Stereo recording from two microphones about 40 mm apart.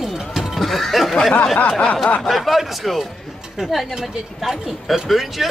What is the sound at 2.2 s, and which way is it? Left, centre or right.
A woman's voice, centre.